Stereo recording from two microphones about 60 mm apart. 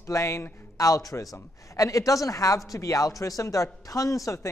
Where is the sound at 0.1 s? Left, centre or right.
Left.